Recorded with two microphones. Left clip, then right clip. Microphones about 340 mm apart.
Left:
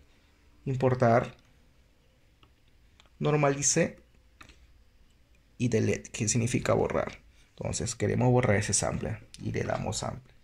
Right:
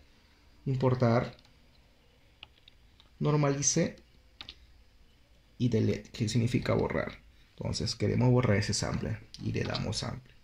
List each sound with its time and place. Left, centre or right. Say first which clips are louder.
0.7 s speech: left 4 dB; left
3.2 s speech: left 3 dB; left
5.6 s speech: left 2 dB; left